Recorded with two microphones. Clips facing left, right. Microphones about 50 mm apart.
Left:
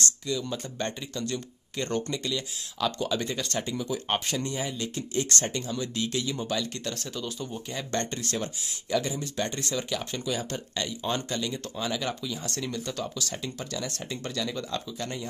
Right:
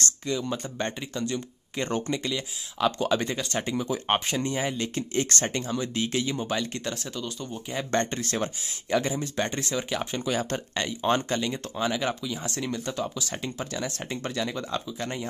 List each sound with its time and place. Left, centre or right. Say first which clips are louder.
0.3 s speech: right 4 dB; right
3.0 s speech: right 3 dB; right
4.6 s speech: right 4 dB; right
6.8 s speech: right 2 dB; centre
7.2 s speech: even; centre
7.9 s speech: right 4 dB; right
10.2 s speech: right 3 dB; right
11.7 s speech: right 5 dB; right